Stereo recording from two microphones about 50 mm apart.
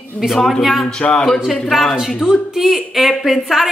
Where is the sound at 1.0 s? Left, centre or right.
Centre.